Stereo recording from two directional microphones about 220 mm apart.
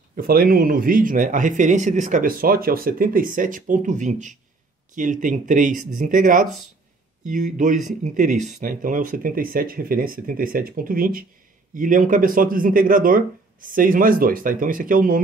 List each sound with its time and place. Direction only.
0.1 s speech: 40° right (ahead or behind)